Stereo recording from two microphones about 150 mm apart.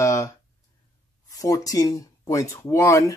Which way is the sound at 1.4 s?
25° left (ahead or behind).